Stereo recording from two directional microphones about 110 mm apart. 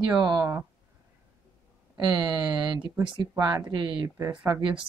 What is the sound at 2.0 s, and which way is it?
Speech, 40° right (ahead or behind).